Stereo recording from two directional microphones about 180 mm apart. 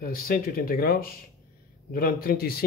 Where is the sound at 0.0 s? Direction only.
55° left (ahead or behind).